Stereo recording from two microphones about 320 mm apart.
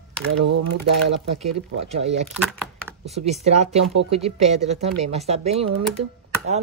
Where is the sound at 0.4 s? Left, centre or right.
Right.